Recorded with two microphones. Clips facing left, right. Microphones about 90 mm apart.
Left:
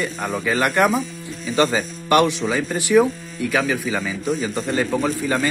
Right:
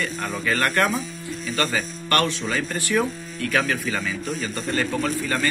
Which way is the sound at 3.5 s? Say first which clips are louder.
Left 2 dB; 5° left (ahead or behind).